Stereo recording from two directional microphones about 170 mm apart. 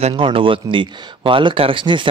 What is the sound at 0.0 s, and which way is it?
Speech, 30° right (ahead or behind).